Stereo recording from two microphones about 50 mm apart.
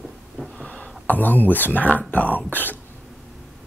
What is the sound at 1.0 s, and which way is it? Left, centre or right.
Speech, left.